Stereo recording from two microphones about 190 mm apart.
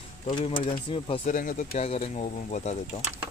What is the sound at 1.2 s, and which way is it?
Speech, 45° left (ahead or behind).